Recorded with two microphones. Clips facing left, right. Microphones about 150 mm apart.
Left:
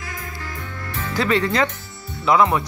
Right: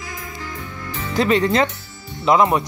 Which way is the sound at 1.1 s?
20° right (ahead or behind).